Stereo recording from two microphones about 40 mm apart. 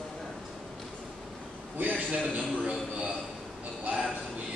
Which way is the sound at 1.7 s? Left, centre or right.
Right.